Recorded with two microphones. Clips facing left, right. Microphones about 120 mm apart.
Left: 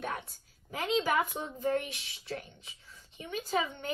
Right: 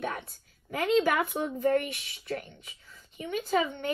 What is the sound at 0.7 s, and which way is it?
Speech, 55° right (ahead or behind).